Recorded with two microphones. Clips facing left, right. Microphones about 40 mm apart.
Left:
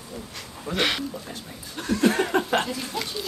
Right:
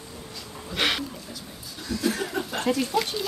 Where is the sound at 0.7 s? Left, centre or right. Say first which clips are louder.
Left 1 dB; centre.